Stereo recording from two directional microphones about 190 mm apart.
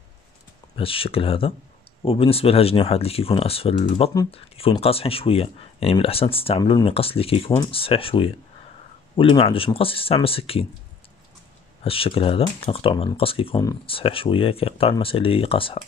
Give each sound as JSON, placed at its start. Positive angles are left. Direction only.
{"t": 0.7, "sound": "speech", "side_deg": 30}
{"t": 11.8, "sound": "speech", "side_deg": 30}